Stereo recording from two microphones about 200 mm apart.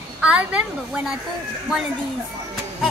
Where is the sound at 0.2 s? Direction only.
5° right (ahead or behind).